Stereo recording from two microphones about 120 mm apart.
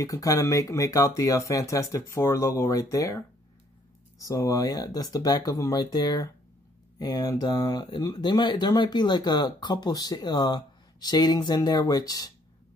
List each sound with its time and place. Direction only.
0.0 s speech: 30° left (ahead or behind)